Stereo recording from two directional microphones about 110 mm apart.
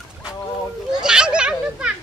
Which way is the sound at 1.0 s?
5° right (ahead or behind).